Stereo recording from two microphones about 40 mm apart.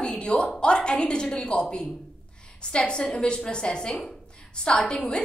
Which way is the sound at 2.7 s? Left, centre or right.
Left.